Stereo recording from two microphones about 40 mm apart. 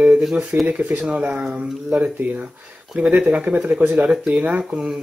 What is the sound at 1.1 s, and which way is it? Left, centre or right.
Speech, right.